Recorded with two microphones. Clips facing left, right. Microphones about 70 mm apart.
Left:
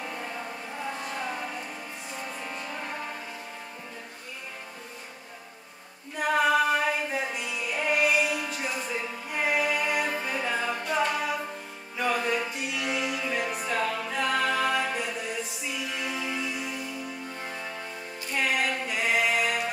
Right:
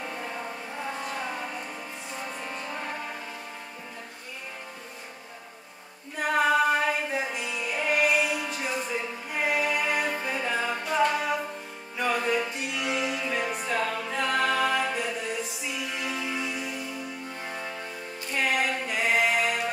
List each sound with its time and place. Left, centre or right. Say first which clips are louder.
0.0 s a sound: right 1 dB; centre
2.1 s music: right 1 dB; centre
6.1 s music: even; centre